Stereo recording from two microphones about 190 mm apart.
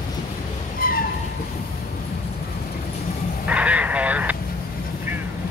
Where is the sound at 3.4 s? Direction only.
5° right (ahead or behind).